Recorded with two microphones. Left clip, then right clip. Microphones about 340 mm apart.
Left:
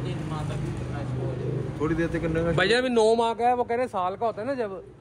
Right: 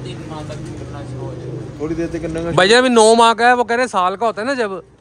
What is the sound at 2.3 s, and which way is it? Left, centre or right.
Speech, centre.